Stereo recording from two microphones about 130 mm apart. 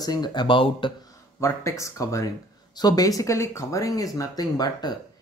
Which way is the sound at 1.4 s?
20° left (ahead or behind).